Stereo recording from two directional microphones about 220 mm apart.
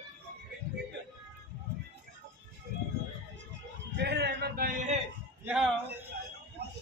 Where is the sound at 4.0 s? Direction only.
50° right (ahead or behind).